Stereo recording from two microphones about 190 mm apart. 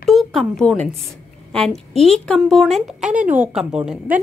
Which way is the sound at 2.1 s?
Centre (ahead or behind).